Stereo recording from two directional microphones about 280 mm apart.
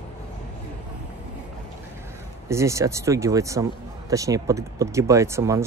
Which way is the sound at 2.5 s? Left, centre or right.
Centre.